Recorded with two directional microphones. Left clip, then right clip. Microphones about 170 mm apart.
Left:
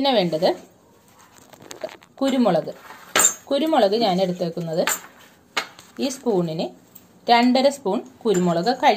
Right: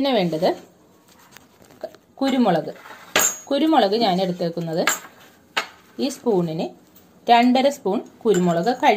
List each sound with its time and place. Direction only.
0.0 s a woman's voice: 5° right (ahead or behind)
1.8 s a sound: centre (ahead or behind)
3.4 s a woman's voice: centre (ahead or behind)